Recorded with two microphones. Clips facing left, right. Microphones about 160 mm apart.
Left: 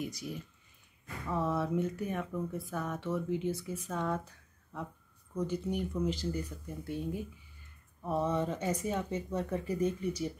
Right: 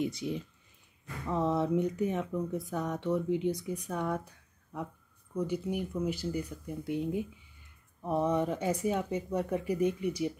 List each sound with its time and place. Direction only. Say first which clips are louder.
0.0 s speech: right 6 dB; 25° right (ahead or behind)